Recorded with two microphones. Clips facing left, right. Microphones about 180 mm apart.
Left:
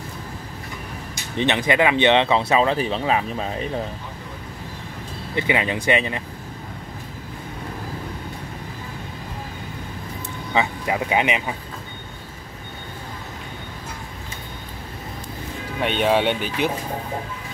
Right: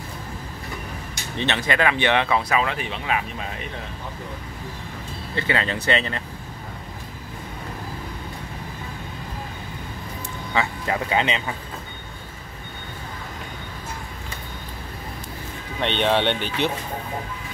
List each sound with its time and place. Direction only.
1.3 s speech: 15° left (ahead or behind); by 3.6 s 30° left (ahead or behind)
5.3 s speech: 15° left (ahead or behind)
10.5 s speech: 15° left (ahead or behind)
15.8 s speech: 5° left (ahead or behind)